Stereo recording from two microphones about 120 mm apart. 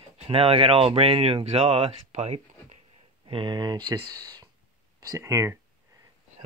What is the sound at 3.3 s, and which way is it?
Speech, 40° right (ahead or behind).